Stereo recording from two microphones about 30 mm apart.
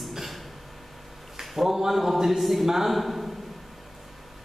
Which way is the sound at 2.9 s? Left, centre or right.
Centre.